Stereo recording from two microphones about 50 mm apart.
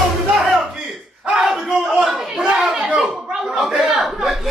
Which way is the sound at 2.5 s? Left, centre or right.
Right.